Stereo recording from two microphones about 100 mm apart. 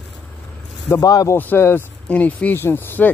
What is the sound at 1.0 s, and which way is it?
Speech, 35° left (ahead or behind).